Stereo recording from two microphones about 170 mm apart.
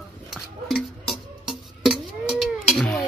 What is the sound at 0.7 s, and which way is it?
Music, centre (ahead or behind).